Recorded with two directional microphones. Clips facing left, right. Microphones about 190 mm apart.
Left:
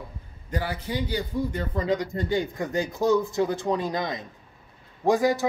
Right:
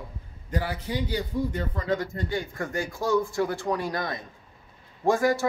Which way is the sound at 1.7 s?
20° left (ahead or behind).